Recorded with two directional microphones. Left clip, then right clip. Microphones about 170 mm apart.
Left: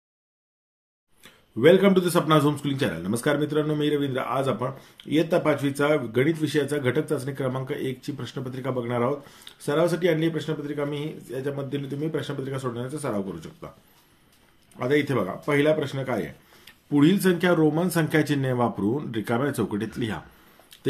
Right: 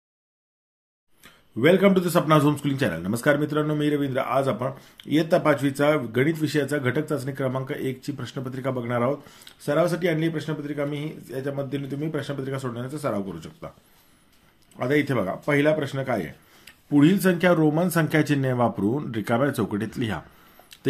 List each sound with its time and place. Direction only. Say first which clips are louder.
1.2 s a man's voice: left 2 dB; 25° right (ahead or behind)
14.8 s a man's voice: even; 30° right (ahead or behind)